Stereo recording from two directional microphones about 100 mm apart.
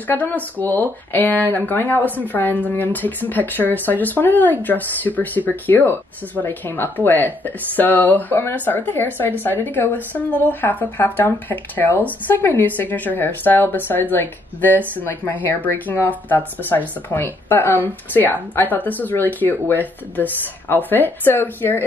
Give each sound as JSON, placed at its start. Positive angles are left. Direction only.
{"t": 0.1, "sound": "speech", "side_deg": 20}